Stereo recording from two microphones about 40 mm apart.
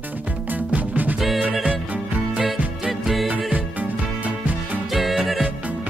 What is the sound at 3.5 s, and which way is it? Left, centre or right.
Music, right.